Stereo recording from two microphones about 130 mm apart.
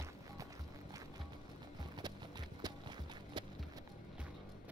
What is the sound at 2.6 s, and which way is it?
Music, 30° right (ahead or behind).